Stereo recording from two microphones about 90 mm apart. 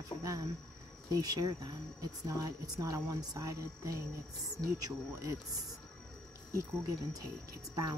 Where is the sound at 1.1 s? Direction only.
45° right (ahead or behind).